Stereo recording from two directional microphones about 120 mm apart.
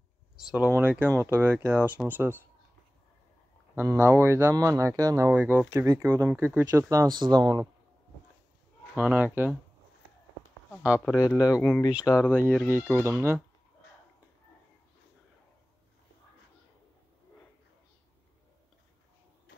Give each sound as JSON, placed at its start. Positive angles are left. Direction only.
{"t": 0.4, "sound": "speech", "side_deg": -5}
{"t": 3.7, "sound": "speech", "side_deg": -20}
{"t": 5.3, "sound": "speech", "side_deg": -15}
{"t": 7.1, "sound": "speech", "side_deg": -35}
{"t": 8.9, "sound": "speech", "side_deg": -15}
{"t": 10.8, "sound": "speech", "side_deg": -10}
{"t": 11.1, "sound": "speech", "side_deg": 30}
{"t": 11.9, "sound": "speech", "side_deg": -10}
{"t": 12.2, "sound": "speech", "side_deg": 20}
{"t": 12.9, "sound": "speech", "side_deg": -20}